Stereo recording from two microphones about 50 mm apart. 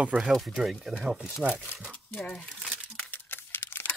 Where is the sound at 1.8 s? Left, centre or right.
Left.